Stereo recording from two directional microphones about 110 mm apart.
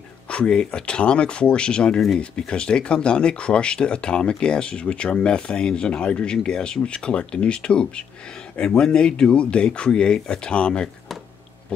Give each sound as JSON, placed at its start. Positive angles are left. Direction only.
{"t": 0.3, "sound": "speech", "side_deg": 10}